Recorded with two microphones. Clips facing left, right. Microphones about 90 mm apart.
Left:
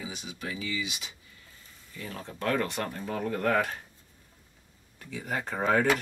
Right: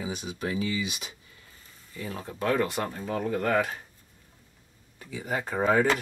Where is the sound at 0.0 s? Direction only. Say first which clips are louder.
Right 6 dB; 45° right (ahead or behind).